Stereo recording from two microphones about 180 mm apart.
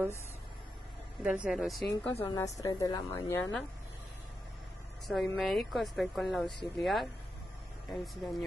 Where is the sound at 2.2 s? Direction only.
20° left (ahead or behind).